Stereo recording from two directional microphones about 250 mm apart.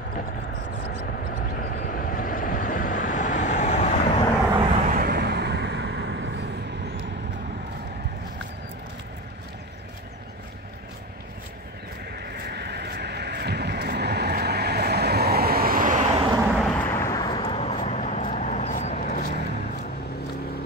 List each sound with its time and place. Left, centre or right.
1.3 s vehicle: left
4.8 s vehicle: right
12.3 s vehicle: right; by 16.4 s centre
16.5 s vehicle: centre; by 19.2 s left